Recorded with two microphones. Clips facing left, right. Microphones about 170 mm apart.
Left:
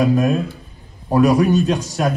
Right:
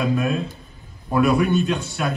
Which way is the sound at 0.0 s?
35° left (ahead or behind).